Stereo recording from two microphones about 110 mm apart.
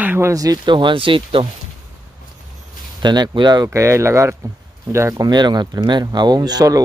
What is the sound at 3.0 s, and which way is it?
Speech, 40° right (ahead or behind).